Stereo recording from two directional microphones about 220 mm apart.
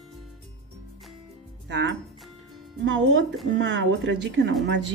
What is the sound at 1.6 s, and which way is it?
Speech, 55° right (ahead or behind).